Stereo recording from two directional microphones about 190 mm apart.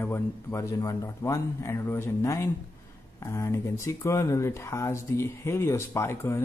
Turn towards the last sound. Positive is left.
turn(degrees=15)  # may be behind; listen again after turning